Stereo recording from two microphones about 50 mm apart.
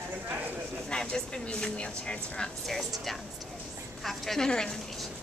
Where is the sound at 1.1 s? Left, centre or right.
Centre.